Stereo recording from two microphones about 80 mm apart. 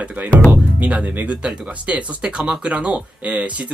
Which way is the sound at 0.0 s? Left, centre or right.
Centre.